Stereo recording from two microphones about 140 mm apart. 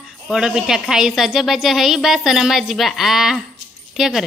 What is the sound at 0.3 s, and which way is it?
A woman's voice, 5° right (ahead or behind).